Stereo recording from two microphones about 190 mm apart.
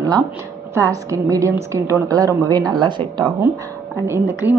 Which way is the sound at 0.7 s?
15° right (ahead or behind).